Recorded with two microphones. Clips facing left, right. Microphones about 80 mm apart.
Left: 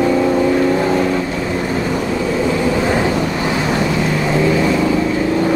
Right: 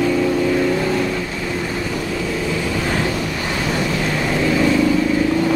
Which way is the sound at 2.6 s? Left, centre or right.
Left.